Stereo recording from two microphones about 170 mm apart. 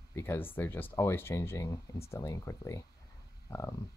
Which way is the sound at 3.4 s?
20° left (ahead or behind).